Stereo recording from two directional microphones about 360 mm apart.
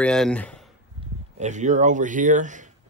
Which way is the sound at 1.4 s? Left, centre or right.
Centre.